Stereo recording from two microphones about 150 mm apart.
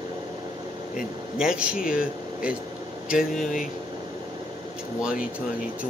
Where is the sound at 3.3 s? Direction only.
55° left (ahead or behind).